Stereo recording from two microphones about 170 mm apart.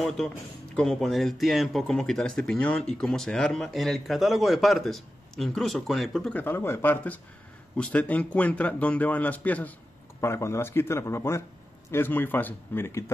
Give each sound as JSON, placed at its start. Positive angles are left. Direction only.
{"t": 0.7, "sound": "a man's voice", "side_deg": 0}